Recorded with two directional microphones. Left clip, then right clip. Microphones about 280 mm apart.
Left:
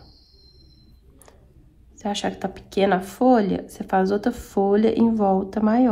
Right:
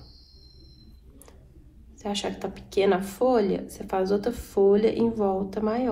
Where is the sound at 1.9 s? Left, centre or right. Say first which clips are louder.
Left 4 dB; left.